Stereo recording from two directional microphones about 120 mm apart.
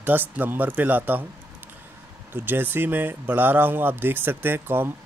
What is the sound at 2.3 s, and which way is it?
Speech, 15° right (ahead or behind).